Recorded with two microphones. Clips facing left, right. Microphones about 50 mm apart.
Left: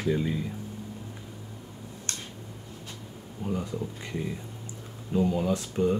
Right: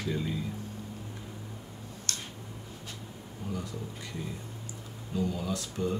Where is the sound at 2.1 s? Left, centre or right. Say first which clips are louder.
Even; left.